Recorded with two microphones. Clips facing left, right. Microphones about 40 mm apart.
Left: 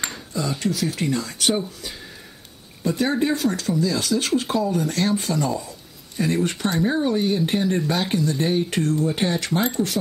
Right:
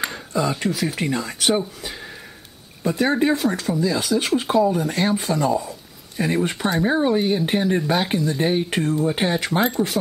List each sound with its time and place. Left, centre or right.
0.1 s speech: right
2.8 s speech: centre